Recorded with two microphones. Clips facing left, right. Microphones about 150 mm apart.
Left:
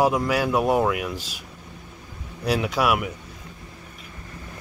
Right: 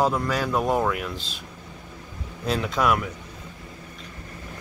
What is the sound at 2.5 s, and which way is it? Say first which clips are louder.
Speech: left 1 dB; 10° left (ahead or behind).